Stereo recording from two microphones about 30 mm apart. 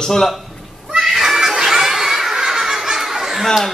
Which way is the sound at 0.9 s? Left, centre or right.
Centre.